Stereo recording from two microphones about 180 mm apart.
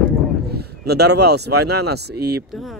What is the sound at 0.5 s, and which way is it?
Speech, 65° right (ahead or behind).